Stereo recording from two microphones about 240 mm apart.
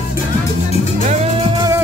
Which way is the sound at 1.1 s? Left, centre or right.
Centre.